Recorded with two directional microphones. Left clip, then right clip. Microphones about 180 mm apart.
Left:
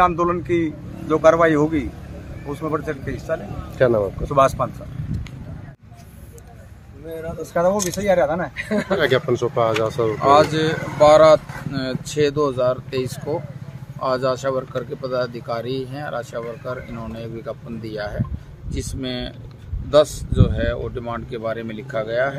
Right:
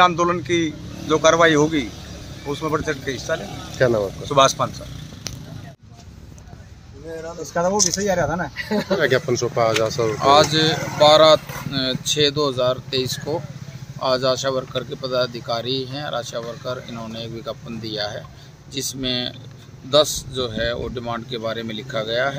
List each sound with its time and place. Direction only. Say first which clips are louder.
0.2 s a man's voice: even; 5° right (ahead or behind)
1.3 s speech: right 1 dB; 10° right (ahead or behind)
3.3 s speech: left 3 dB; centre (ahead or behind)
7.7 s speech: right 3 dB; 45° left (ahead or behind)
8.1 s speech: left 3 dB; 15° right (ahead or behind)
8.9 s speech: even; centre (ahead or behind)